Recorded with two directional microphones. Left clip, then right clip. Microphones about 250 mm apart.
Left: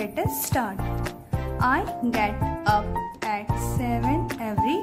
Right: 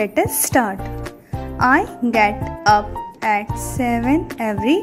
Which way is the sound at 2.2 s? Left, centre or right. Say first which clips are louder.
Right 11 dB; right.